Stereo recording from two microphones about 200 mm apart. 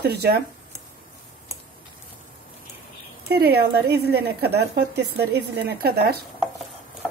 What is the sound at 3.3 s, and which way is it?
A woman's voice, 50° right (ahead or behind).